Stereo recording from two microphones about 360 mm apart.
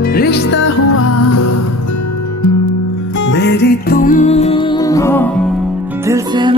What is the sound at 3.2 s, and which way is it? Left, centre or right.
Music, left.